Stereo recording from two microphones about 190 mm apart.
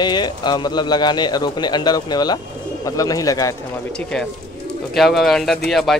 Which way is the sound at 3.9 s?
5° left (ahead or behind).